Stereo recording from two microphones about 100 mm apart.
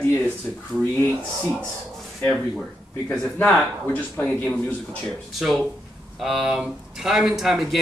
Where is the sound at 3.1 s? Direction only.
15° left (ahead or behind).